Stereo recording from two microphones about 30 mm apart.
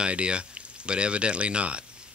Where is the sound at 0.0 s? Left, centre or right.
Right.